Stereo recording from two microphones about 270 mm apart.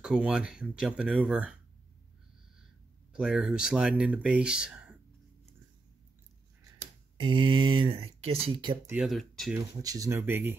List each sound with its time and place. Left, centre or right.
0.0 s speech: centre
3.1 s speech: centre
7.2 s speech: centre
8.9 s speech: centre
9.8 s speech: centre